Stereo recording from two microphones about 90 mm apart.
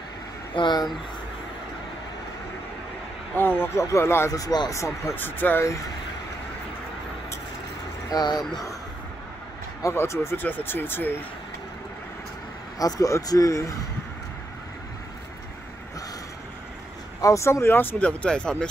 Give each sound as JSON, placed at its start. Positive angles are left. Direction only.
{"t": 0.6, "sound": "speech", "side_deg": 55}
{"t": 3.3, "sound": "speech", "side_deg": 25}
{"t": 4.3, "sound": "speech", "side_deg": 45}
{"t": 4.7, "sound": "speech", "side_deg": 35}
{"t": 5.1, "sound": "speech", "side_deg": 20}
{"t": 8.1, "sound": "speech", "side_deg": 50}
{"t": 9.8, "sound": "speech", "side_deg": 35}
{"t": 12.7, "sound": "speech", "side_deg": 45}
{"t": 17.2, "sound": "speech", "side_deg": 35}